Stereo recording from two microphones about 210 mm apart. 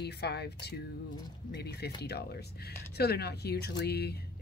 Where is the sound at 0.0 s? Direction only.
50° left (ahead or behind).